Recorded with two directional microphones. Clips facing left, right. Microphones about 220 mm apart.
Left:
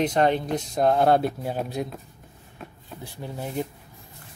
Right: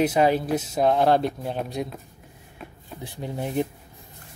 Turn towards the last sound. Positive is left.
turn(degrees=-20)  # may be behind; listen again after turning